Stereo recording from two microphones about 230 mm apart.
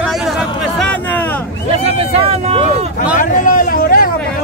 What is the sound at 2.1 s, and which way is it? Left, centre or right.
Vehicle, right.